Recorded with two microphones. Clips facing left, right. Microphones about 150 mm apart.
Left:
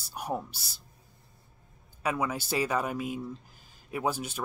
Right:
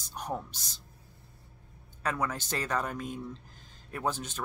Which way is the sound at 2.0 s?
10° left (ahead or behind).